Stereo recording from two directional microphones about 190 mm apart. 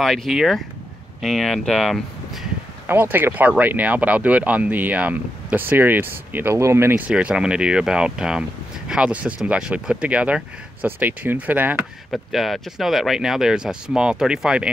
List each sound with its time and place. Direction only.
0.0 s speech: centre (ahead or behind)
2.9 s speech: 10° right (ahead or behind)